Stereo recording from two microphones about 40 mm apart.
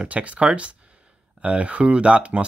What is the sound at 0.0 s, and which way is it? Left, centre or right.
Speech, right.